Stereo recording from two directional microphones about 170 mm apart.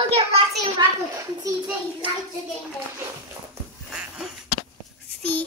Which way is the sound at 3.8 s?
5° right (ahead or behind).